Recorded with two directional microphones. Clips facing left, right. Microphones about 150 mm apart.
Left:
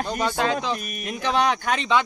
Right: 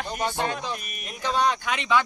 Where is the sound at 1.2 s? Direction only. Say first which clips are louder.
Left 2 dB; 75° left (ahead or behind).